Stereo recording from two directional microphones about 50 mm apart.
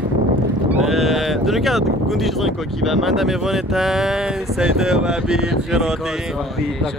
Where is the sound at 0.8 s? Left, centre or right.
Centre.